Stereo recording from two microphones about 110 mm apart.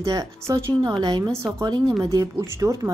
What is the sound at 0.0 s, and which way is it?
Speech, 30° right (ahead or behind).